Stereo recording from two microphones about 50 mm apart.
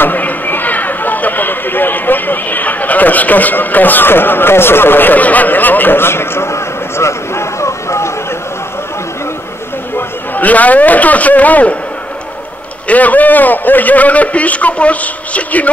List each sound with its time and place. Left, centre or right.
0.0 s speech: left
9.9 s a man's voice: left
12.8 s a man's voice: left